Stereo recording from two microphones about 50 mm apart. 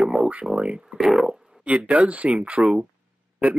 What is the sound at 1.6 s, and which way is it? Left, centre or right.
Speech, right.